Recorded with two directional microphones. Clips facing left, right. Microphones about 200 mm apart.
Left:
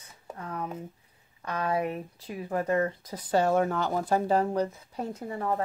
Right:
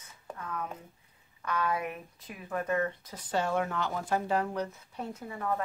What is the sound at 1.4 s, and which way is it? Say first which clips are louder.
Speech: left 3 dB; 35° left (ahead or behind).